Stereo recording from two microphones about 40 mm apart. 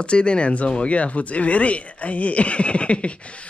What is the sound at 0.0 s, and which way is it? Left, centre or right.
Speech, left.